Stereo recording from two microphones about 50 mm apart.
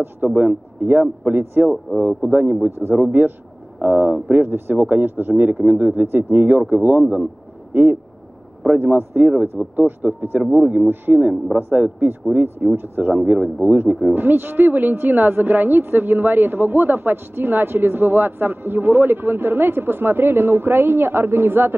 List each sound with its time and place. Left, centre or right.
0.0 s speech: right
6.5 s speech: right
6.8 s speech: right
7.7 s a woman's voice: right
13.1 s a woman's voice: right